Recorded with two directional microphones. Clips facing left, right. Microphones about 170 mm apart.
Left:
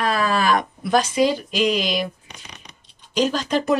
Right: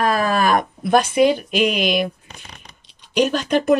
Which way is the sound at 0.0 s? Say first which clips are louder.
Right 2 dB; 50° right (ahead or behind).